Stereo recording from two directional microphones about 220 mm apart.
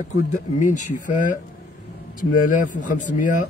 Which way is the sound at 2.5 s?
35° left (ahead or behind).